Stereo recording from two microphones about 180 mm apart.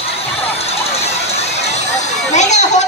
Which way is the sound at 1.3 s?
35° left (ahead or behind).